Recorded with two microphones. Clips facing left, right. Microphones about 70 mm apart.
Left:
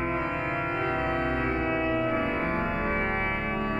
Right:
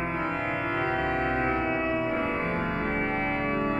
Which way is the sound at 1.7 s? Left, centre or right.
Centre.